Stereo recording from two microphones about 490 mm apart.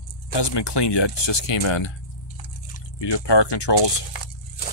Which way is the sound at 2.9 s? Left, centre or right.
Left.